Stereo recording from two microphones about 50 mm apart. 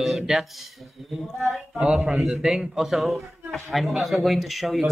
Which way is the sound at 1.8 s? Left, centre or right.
Centre.